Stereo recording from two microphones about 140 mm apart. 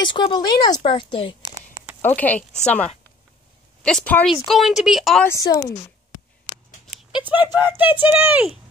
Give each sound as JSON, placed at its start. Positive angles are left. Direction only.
{"t": 0.0, "sound": "speech", "side_deg": 35}
{"t": 2.0, "sound": "speech", "side_deg": 15}
{"t": 4.3, "sound": "speech", "side_deg": 0}
{"t": 5.2, "sound": "a woman's voice", "side_deg": 20}
{"t": 7.1, "sound": "speech", "side_deg": -5}